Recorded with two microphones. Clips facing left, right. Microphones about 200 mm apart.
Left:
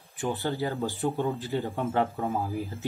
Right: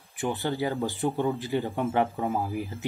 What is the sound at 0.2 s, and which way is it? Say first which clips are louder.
Speech: right 1 dB; 15° right (ahead or behind).